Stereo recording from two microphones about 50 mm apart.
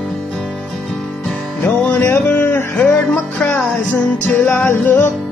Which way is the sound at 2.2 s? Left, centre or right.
Left.